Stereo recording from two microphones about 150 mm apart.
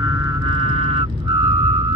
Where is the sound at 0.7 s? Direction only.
40° right (ahead or behind).